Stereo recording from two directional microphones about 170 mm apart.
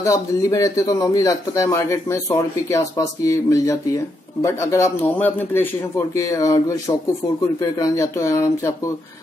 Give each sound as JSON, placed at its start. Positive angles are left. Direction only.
{"t": 0.0, "sound": "a man's voice", "side_deg": 20}